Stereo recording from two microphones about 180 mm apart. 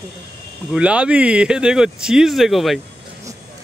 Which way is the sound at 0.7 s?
5° right (ahead or behind).